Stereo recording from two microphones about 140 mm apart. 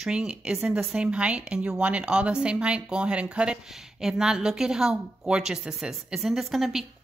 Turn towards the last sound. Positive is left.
turn(degrees=0)  # may be behind; listen again after turning